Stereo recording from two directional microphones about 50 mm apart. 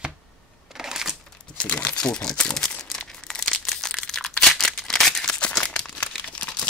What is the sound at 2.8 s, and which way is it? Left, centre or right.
Crumpling, centre.